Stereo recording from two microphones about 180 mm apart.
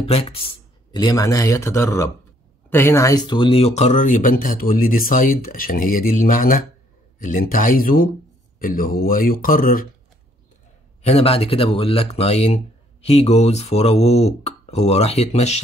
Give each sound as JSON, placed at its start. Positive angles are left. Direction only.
{"t": 0.0, "sound": "speech", "side_deg": 35}
{"t": 11.0, "sound": "speech", "side_deg": 35}